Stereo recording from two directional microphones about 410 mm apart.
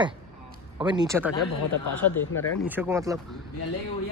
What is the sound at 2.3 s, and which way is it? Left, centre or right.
Speech, centre.